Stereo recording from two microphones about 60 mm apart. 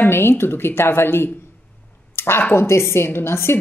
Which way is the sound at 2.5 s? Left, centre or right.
Left.